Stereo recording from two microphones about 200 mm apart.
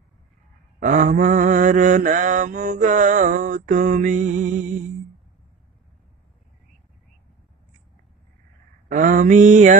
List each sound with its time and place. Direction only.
0.7 s mantra: 40° right (ahead or behind)
8.8 s mantra: 40° right (ahead or behind)